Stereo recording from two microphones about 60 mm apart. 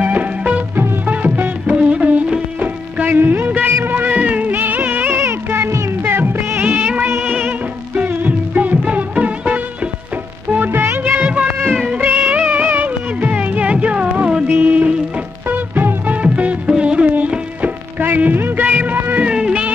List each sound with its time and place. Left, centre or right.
0.0 s music: right
3.1 s music of bollywood: right
3.8 s music: right
6.6 s music of bollywood: right
7.1 s music: right
10.5 s music: right
11.1 s music: right
17.1 s music of bollywood: right
19.2 s music: centre